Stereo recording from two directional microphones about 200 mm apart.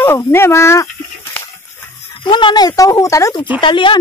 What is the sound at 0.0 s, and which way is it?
Speech, 15° left (ahead or behind).